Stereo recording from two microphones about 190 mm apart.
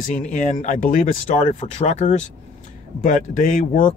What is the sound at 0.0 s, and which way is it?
Speech, 40° left (ahead or behind).